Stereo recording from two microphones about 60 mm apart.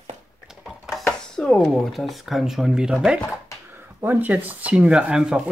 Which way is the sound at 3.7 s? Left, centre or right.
Right.